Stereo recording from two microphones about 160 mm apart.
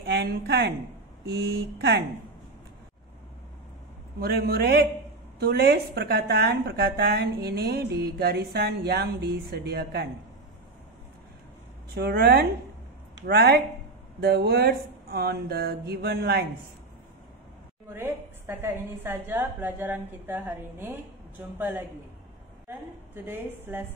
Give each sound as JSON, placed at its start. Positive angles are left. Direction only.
{"t": 0.0, "sound": "a woman's voice", "side_deg": -90}
{"t": 4.2, "sound": "a woman's voice", "side_deg": -85}
{"t": 11.9, "sound": "speech", "side_deg": -80}
{"t": 13.3, "sound": "a woman's voice", "side_deg": -90}
{"t": 17.9, "sound": "a woman's voice", "side_deg": -15}
{"t": 23.1, "sound": "a woman's voice", "side_deg": -15}